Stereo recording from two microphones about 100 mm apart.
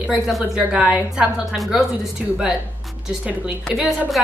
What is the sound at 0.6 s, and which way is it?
A woman's voice, 10° right (ahead or behind).